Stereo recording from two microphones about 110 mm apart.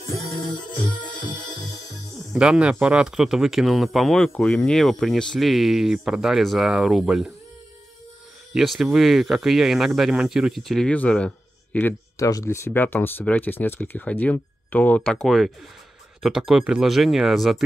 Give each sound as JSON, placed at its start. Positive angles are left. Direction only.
{"t": 0.4, "sound": "music", "side_deg": 45}
{"t": 2.3, "sound": "speech", "side_deg": -10}
{"t": 8.5, "sound": "speech", "side_deg": 0}
{"t": 10.9, "sound": "speech", "side_deg": 10}
{"t": 12.2, "sound": "speech", "side_deg": 30}
{"t": 12.6, "sound": "speech", "side_deg": 15}